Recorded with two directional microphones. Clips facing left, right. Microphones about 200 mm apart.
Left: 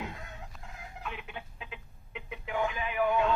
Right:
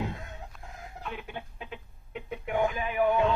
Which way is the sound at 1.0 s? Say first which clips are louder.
Right 3 dB; 35° right (ahead or behind).